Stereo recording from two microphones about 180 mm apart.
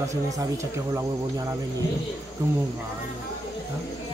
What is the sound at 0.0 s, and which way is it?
Speech, 15° right (ahead or behind).